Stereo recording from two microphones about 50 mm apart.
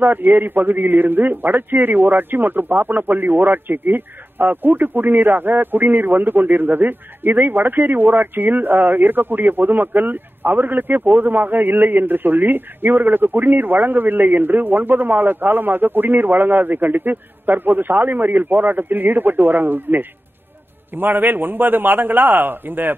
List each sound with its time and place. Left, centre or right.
0.0 s a man's voice: right